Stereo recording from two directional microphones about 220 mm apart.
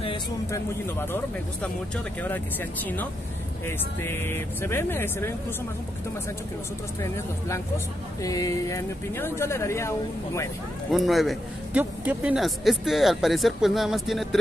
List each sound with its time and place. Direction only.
0.0 s a sound: 20° left (ahead or behind)
0.8 s speech: 10° left (ahead or behind)
7.0 s speech: 15° left (ahead or behind)
10.9 s a man's voice: centre (ahead or behind)